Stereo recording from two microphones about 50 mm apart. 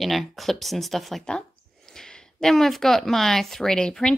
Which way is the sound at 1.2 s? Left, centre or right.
Centre.